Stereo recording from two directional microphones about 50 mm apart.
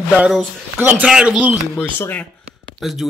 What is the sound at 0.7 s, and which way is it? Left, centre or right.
Speech, right.